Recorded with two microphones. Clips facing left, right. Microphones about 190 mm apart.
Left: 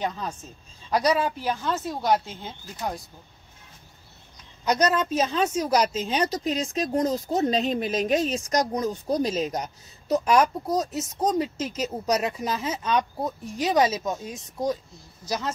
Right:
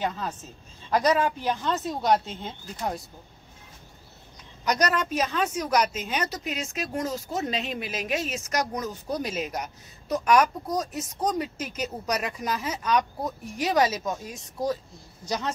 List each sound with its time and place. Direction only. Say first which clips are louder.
0.8 s a woman's voice: even; 10° left (ahead or behind)
4.6 s a woman's voice: left 3 dB; 25° left (ahead or behind)
15.2 s a woman's voice: even; 5° left (ahead or behind)